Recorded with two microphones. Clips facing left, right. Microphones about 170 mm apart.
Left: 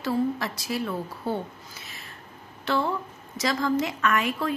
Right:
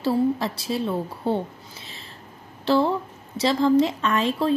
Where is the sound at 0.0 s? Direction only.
30° right (ahead or behind).